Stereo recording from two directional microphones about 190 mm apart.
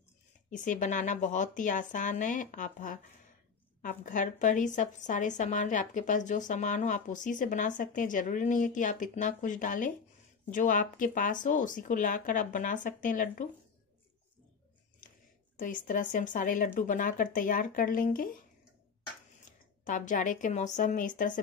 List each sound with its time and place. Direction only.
0.5 s a woman's voice: 40° left (ahead or behind)
15.5 s a woman's voice: 45° left (ahead or behind)
19.8 s a woman's voice: 45° left (ahead or behind)